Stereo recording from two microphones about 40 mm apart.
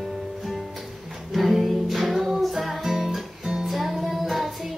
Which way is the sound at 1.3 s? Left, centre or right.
Centre.